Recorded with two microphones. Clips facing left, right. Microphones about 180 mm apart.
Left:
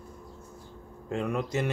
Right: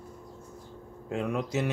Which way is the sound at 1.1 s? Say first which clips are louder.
Even; centre (ahead or behind).